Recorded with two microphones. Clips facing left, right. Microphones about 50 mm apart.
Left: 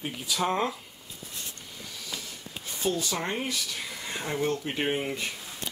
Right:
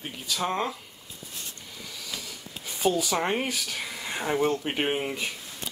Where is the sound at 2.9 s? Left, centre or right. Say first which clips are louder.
Right 4 dB; right.